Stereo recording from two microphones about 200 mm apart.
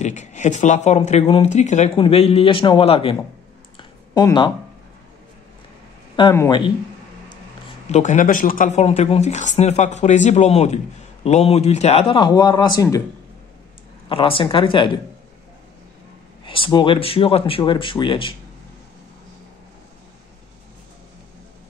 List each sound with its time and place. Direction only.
0.0 s speech: 35° left (ahead or behind)
3.7 s a sound: 20° left (ahead or behind)
6.3 s speech: 20° left (ahead or behind)
7.9 s speech: 40° left (ahead or behind); by 13.0 s 20° left (ahead or behind)
14.0 s speech: 25° left (ahead or behind)
16.4 s speech: 25° left (ahead or behind)